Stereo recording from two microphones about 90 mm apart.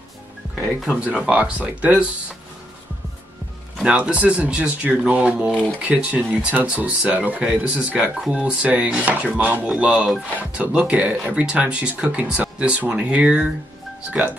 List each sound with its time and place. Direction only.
0.6 s speech: 5° right (ahead or behind)
3.8 s speech: 15° right (ahead or behind)
5.5 s speech: 10° left (ahead or behind)
5.8 s speech: 15° right (ahead or behind)